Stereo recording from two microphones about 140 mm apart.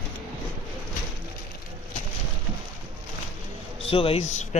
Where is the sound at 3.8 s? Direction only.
40° left (ahead or behind).